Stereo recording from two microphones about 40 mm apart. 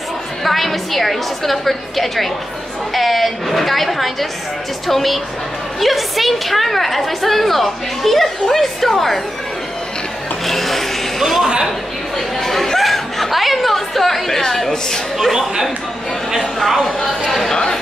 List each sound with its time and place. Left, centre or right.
0.4 s a woman's voice: centre
10.4 s speech: centre
12.4 s a sound: centre
15.3 s speech: centre
17.5 s speech: centre